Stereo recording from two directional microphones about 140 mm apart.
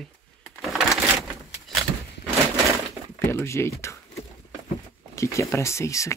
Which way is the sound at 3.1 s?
15° left (ahead or behind).